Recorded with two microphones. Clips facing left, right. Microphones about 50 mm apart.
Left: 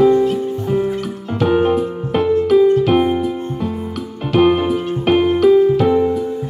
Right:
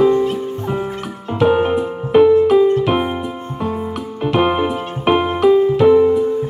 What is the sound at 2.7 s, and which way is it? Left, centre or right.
Music, right.